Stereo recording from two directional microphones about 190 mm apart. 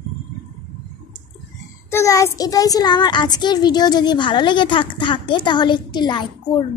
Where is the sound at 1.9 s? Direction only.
15° left (ahead or behind).